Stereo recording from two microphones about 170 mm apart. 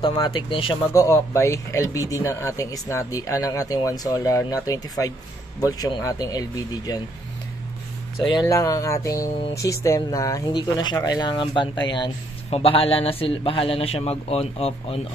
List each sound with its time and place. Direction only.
0.0 s speech: 25° left (ahead or behind)
0.9 s speech: 15° left (ahead or behind)
8.2 s speech: 25° left (ahead or behind)